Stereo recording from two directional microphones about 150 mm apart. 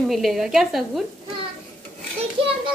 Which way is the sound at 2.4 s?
35° right (ahead or behind).